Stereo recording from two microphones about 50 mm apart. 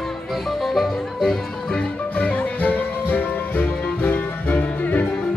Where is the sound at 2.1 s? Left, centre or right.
Left.